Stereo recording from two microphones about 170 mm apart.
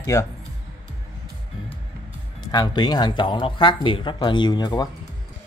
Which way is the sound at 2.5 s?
25° left (ahead or behind).